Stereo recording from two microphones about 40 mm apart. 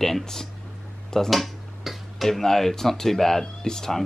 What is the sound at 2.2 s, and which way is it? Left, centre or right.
Speech, centre.